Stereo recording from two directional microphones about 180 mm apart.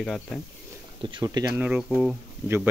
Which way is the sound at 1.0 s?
25° right (ahead or behind).